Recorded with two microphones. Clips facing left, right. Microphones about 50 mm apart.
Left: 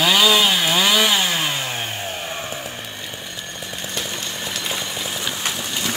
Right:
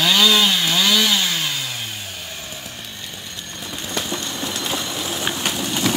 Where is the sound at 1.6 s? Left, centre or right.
Left.